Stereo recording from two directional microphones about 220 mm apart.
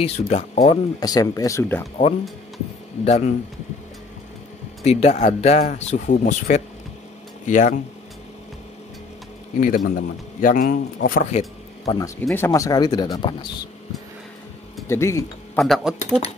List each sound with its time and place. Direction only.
0.0 s speech: 30° left (ahead or behind)
0.9 s speech: 15° left (ahead or behind)
3.1 s a man's voice: 30° left (ahead or behind)
4.8 s a man's voice: 30° left (ahead or behind)
9.6 s a man's voice: 40° left (ahead or behind)
12.0 s speech: 10° left (ahead or behind)
14.9 s speech: 15° left (ahead or behind)
15.6 s speech: centre (ahead or behind)